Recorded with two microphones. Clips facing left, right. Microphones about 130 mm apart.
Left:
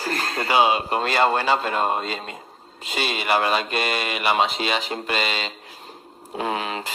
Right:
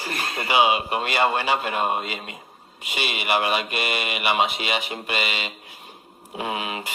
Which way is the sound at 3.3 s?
35° left (ahead or behind).